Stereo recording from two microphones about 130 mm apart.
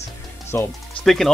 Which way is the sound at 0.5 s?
20° left (ahead or behind).